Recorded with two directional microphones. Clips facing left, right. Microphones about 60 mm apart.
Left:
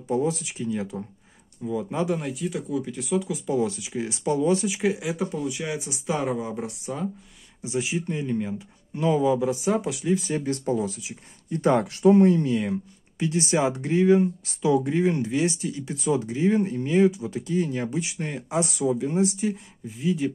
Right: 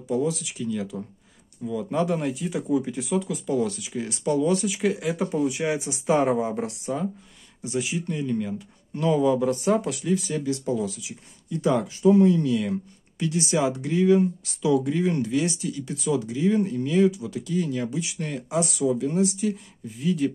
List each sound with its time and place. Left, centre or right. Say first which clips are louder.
0.1 s speech: even; left
1.6 s speech: even; centre
2.0 s speech: right 4 dB; centre
3.5 s speech: even; centre
5.5 s speech: right 4 dB; centre
7.6 s speech: even; left; by 9.9 s centre
9.9 s speech: left 1 dB; left
11.6 s speech: left 1 dB; left
12.4 s speech: even; left
20.0 s speech: right 1 dB; centre